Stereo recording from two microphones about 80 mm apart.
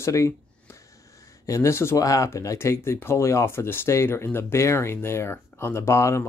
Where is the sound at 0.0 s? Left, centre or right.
Left.